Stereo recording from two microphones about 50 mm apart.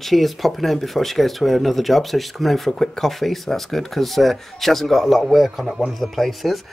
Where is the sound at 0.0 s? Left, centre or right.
Centre.